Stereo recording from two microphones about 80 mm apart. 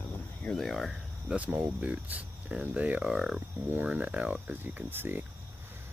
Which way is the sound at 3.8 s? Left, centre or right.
Centre.